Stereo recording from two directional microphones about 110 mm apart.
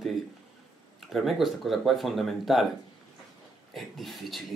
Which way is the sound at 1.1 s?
Centre (ahead or behind).